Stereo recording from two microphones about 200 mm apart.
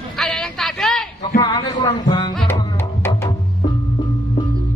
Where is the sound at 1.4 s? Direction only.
20° left (ahead or behind).